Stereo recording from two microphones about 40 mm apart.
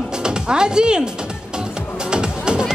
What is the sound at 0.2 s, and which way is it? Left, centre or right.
Speech, right.